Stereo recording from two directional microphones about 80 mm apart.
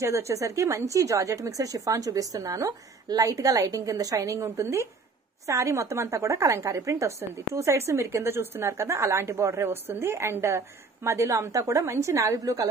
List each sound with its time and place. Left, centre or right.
0.0 s a woman's voice: right